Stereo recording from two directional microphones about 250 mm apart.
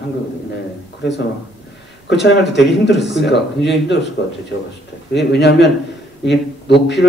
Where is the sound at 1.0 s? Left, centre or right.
Left.